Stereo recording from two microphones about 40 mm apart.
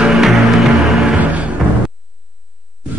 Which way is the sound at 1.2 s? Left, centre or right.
Right.